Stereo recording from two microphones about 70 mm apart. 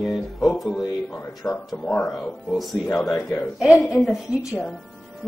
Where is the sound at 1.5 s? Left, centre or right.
Centre.